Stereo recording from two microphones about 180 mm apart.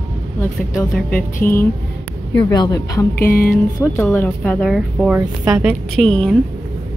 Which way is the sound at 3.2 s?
55° left (ahead or behind).